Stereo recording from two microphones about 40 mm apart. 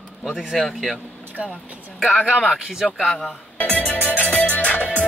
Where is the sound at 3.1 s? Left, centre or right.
Centre.